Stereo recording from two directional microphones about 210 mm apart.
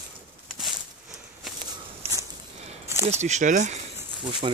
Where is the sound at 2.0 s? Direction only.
30° right (ahead or behind).